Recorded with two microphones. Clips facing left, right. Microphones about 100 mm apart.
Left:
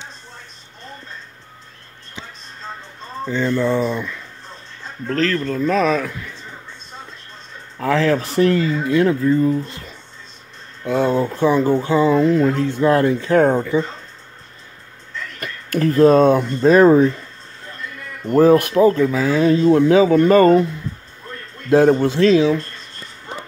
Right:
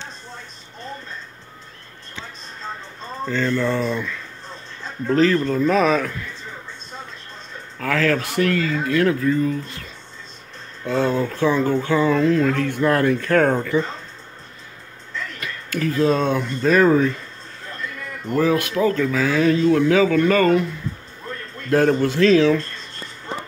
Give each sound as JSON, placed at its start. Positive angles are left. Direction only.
{"t": 3.3, "sound": "speech", "side_deg": 15}
{"t": 5.0, "sound": "a man's voice", "side_deg": -15}
{"t": 7.8, "sound": "speech", "side_deg": 20}
{"t": 10.9, "sound": "speech", "side_deg": 10}
{"t": 15.4, "sound": "speech", "side_deg": 45}
{"t": 18.3, "sound": "speech", "side_deg": 40}
{"t": 21.6, "sound": "speech", "side_deg": 15}